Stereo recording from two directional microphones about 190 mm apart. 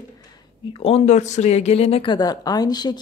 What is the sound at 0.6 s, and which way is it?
Speech, 30° left (ahead or behind).